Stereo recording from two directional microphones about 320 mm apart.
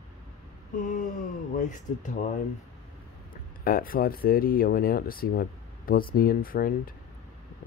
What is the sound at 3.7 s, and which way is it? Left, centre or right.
Speech, left.